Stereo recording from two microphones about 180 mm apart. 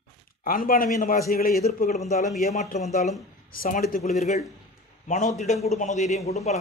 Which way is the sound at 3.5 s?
55° left (ahead or behind).